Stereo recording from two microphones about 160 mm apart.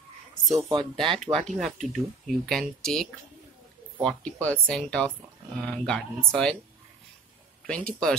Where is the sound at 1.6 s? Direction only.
Centre (ahead or behind).